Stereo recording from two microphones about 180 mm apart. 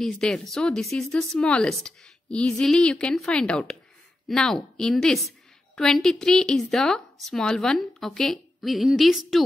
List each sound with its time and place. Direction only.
0.0 s speech: 5° left (ahead or behind)